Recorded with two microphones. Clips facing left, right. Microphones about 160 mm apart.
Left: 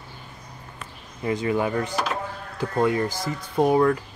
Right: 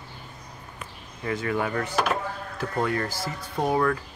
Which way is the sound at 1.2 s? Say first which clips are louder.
Left 4 dB; 20° left (ahead or behind).